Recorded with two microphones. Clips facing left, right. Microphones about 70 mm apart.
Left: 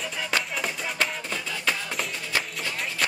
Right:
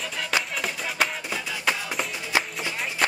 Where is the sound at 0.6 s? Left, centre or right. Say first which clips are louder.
Right 1 dB; centre.